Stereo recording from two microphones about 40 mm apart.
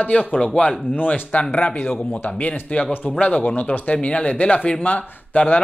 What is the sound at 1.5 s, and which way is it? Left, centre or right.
A man's voice, left.